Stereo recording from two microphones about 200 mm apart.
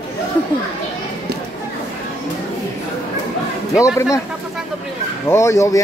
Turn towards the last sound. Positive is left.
turn(degrees=15)  # may be behind; listen again after turning